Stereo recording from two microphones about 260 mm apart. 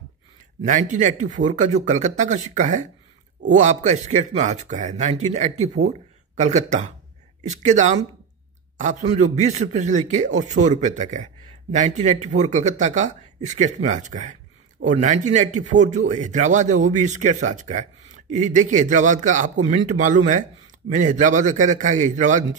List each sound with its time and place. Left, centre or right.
0.7 s speech: right